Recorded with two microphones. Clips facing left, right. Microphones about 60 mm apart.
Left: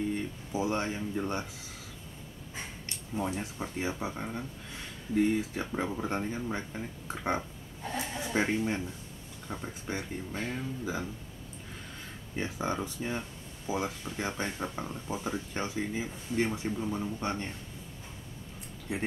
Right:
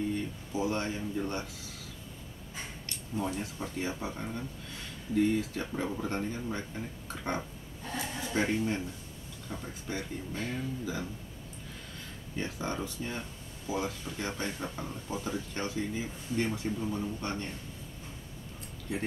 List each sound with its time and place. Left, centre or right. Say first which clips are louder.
0.1 s speech: left 1 dB; centre
3.2 s speech: left 1 dB; left
12.4 s speech: left 2 dB; centre
18.9 s speech: left 1 dB; left